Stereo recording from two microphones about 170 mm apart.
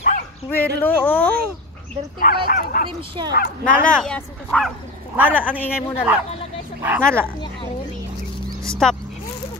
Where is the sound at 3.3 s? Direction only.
60° left (ahead or behind).